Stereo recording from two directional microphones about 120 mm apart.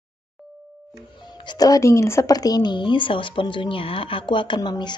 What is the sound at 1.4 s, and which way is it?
A woman's voice, 35° left (ahead or behind).